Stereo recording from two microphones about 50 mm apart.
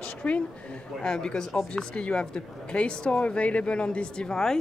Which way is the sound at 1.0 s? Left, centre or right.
Centre.